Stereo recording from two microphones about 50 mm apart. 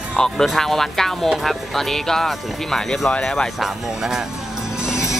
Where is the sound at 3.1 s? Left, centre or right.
Centre.